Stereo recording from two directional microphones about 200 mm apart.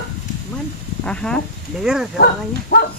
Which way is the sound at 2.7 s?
50° left (ahead or behind).